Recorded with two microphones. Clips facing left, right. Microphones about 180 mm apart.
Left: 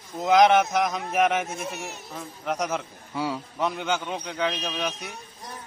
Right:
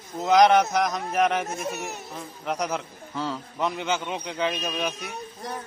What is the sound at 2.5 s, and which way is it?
A man's voice, centre (ahead or behind).